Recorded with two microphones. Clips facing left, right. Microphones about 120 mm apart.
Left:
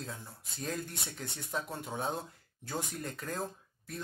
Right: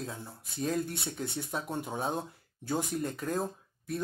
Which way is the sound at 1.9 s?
5° right (ahead or behind).